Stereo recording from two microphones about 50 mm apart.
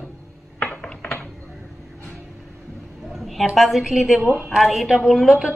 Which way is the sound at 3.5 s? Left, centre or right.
Centre.